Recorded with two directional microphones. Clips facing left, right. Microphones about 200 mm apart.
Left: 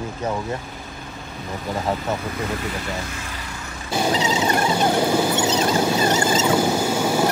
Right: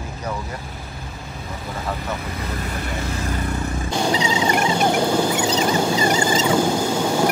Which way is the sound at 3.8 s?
10° left (ahead or behind).